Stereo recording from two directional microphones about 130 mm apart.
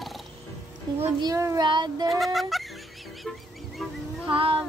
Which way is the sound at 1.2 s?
25° right (ahead or behind).